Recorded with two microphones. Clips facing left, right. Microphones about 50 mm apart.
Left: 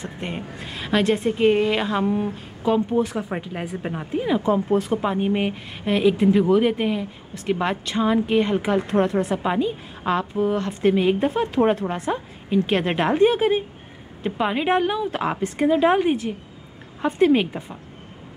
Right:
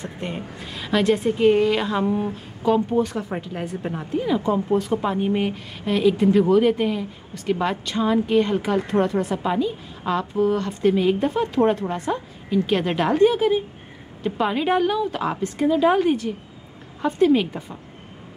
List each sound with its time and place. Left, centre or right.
0.0 s a woman's voice: centre
9.5 s a woman's voice: left
12.4 s a woman's voice: left
14.2 s a woman's voice: centre
16.0 s a woman's voice: centre
17.5 s a woman's voice: centre